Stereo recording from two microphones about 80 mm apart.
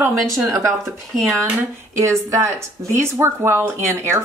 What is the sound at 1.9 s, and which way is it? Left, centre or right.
Speech, right.